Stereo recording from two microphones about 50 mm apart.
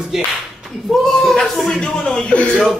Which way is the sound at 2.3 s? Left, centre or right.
Centre.